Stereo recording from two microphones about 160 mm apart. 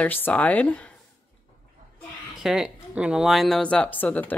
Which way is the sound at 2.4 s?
5° right (ahead or behind).